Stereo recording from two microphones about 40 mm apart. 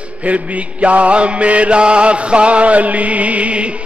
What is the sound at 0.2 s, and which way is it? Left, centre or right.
Music, right.